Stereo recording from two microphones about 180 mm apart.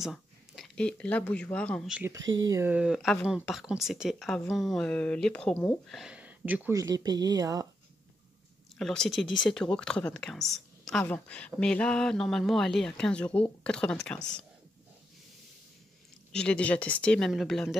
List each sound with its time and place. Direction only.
0.0 s speech: centre (ahead or behind)
2.0 s speech: 15° right (ahead or behind)
6.8 s speech: 20° right (ahead or behind)
8.7 s speech: 5° left (ahead or behind)
16.3 s speech: 5° left (ahead or behind)